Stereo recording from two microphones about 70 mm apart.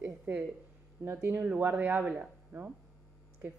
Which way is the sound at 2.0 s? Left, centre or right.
Centre.